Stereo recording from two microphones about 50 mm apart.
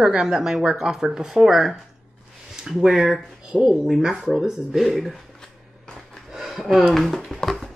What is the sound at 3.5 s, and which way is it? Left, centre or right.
Speech, right.